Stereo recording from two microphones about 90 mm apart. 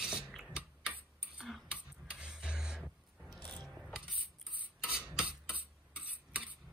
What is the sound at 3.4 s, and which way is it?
Music, 15° left (ahead or behind).